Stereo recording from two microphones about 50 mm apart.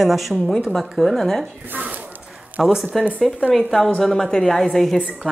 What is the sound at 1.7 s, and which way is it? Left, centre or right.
Speech, right.